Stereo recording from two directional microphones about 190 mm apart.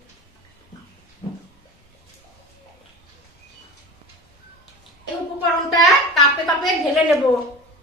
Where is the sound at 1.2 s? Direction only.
25° left (ahead or behind).